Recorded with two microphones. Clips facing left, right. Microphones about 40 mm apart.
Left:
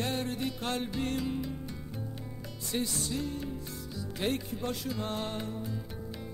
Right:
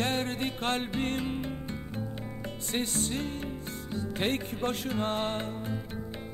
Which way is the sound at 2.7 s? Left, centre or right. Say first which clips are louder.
Right 1 dB; right.